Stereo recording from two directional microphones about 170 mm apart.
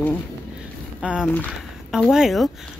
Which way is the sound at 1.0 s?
5° right (ahead or behind).